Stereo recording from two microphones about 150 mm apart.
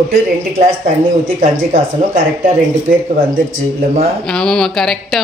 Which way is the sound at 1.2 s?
70° right (ahead or behind).